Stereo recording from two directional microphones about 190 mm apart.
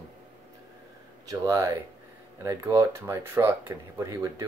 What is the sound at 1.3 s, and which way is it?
Speech, 15° right (ahead or behind).